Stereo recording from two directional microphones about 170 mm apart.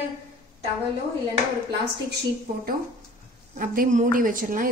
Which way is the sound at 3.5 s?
55° right (ahead or behind).